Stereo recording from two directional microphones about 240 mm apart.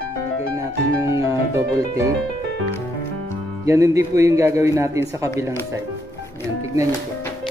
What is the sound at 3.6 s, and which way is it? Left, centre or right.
Speech, centre.